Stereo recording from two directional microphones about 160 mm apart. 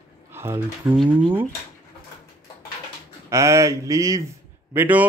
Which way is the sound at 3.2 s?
20° right (ahead or behind).